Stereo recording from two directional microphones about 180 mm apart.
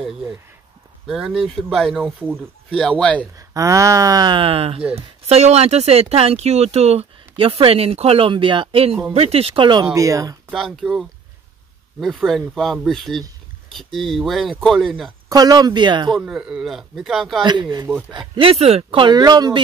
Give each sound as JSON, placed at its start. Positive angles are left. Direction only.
{"t": 1.0, "sound": "speech", "side_deg": 0}
{"t": 2.8, "sound": "speech", "side_deg": 5}
{"t": 3.3, "sound": "speech", "side_deg": -15}
{"t": 10.5, "sound": "speech", "side_deg": 0}
{"t": 15.2, "sound": "speech", "side_deg": -20}
{"t": 16.2, "sound": "speech", "side_deg": -5}
{"t": 17.4, "sound": "speech", "side_deg": -25}